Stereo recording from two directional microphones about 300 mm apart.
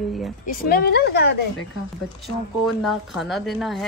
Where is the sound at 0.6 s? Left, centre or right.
Left.